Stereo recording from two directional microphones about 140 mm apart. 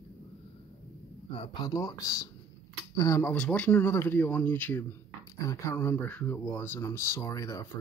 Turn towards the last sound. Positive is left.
turn(degrees=20)  # may be behind; listen again after turning